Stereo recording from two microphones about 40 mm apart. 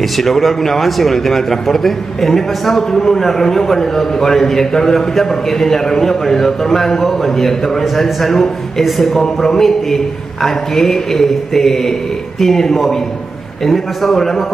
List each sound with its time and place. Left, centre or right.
0.2 s a man's voice: centre